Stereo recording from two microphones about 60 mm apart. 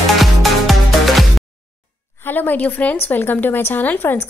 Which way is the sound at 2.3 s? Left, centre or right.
Left.